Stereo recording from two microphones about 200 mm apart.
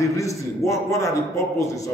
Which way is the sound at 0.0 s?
15° left (ahead or behind).